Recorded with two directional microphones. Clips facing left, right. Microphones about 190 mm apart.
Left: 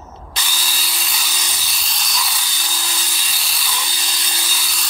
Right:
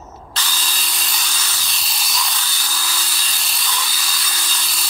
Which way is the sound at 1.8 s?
Centre (ahead or behind).